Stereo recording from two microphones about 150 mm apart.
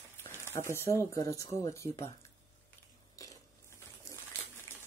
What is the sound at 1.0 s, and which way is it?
Speech, 20° left (ahead or behind).